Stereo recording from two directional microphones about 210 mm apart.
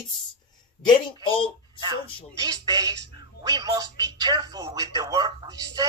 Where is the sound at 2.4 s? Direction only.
20° right (ahead or behind).